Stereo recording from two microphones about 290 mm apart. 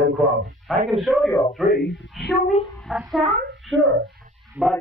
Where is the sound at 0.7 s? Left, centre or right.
Centre.